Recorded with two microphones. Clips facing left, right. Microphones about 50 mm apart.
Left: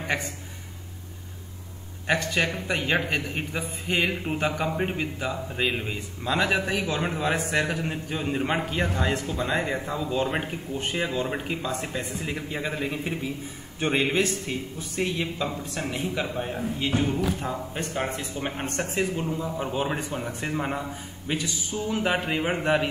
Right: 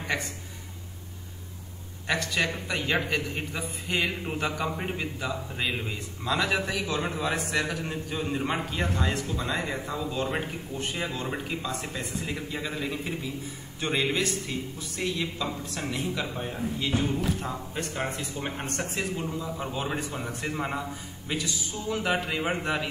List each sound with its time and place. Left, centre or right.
2.0 s a man's voice: left
20.5 s a man's voice: centre
21.3 s a man's voice: left